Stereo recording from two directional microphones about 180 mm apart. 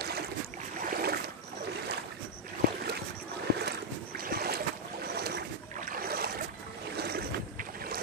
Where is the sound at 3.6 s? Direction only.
55° right (ahead or behind).